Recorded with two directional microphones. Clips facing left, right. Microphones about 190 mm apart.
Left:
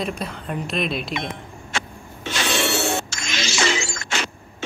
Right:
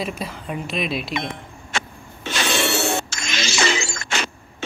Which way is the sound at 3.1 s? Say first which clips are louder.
Right 1 dB; 60° right (ahead or behind).